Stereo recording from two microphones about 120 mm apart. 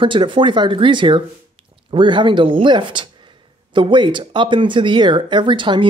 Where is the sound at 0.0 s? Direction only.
45° right (ahead or behind).